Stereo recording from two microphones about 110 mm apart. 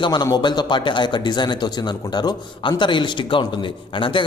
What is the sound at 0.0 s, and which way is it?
Speech, 40° left (ahead or behind).